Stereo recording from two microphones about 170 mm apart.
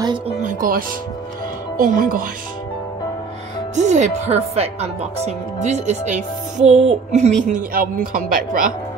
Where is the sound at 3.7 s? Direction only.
45° right (ahead or behind).